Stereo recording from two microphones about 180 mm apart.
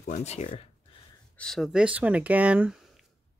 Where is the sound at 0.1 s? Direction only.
40° left (ahead or behind).